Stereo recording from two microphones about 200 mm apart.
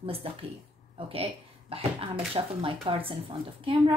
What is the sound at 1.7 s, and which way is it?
Speech, 25° right (ahead or behind).